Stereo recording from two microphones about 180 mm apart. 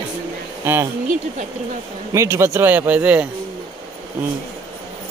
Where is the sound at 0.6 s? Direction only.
15° right (ahead or behind).